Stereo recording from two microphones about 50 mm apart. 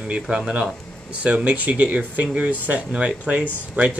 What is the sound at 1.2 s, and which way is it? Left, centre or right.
Speech, right.